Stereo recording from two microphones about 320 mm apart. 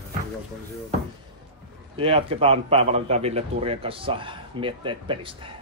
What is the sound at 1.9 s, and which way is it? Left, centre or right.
Speech, centre.